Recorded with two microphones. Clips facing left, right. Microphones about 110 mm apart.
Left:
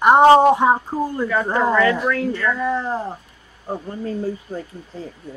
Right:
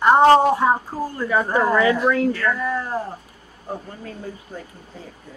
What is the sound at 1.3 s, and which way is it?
Speech, 15° right (ahead or behind).